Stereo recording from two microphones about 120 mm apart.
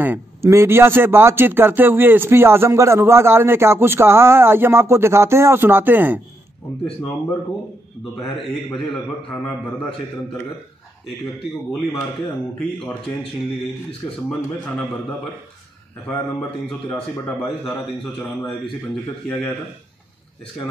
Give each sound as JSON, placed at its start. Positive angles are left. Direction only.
{"t": 0.0, "sound": "speech", "side_deg": -20}